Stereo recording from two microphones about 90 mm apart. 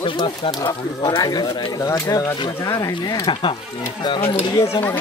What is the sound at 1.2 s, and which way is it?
Speech, 45° left (ahead or behind).